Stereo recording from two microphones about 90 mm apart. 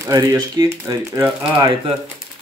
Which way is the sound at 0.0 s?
40° right (ahead or behind).